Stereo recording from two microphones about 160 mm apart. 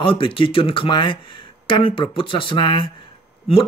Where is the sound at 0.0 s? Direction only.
35° left (ahead or behind).